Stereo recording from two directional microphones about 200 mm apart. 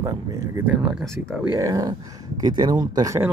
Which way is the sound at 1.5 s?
20° right (ahead or behind).